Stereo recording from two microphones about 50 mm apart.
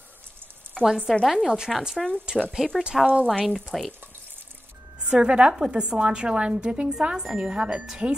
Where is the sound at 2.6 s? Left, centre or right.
Centre.